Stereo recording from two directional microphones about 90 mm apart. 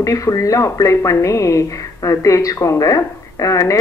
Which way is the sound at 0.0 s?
40° left (ahead or behind).